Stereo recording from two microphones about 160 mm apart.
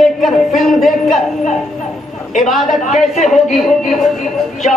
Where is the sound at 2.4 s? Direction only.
Centre (ahead or behind).